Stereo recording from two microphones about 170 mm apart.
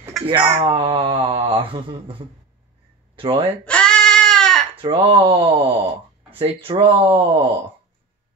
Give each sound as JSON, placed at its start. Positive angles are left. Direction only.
{"t": 0.2, "sound": "speech", "side_deg": 0}
{"t": 0.6, "sound": "speech", "side_deg": -35}
{"t": 3.6, "sound": "a sound", "side_deg": 5}
{"t": 4.8, "sound": "speech", "side_deg": -25}